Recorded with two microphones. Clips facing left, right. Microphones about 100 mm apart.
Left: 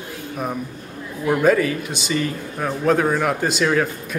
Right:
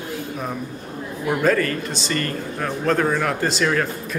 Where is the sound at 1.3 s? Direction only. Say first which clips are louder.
Left 3 dB; 5° left (ahead or behind).